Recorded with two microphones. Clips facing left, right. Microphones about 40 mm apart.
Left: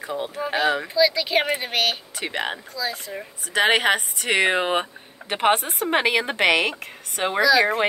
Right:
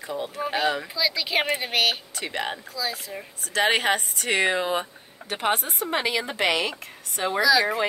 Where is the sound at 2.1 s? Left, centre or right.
Left.